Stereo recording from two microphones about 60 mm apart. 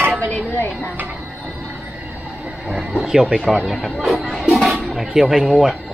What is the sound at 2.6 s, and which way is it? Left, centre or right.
Speech, centre.